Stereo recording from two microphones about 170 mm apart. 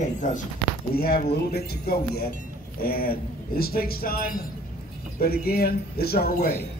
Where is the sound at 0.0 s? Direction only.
45° left (ahead or behind).